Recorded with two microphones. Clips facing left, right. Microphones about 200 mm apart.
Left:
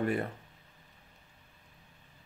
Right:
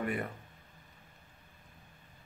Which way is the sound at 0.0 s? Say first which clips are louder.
Left 4 dB; 30° left (ahead or behind).